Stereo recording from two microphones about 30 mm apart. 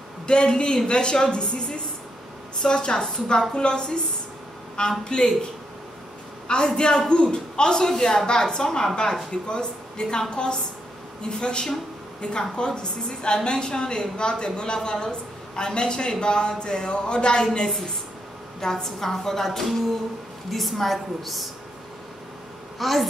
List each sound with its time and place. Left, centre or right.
0.3 s a woman's voice: left
5.0 s speech: left
6.4 s a man's voice: left
18.6 s a woman's voice: centre
22.8 s a woman's voice: centre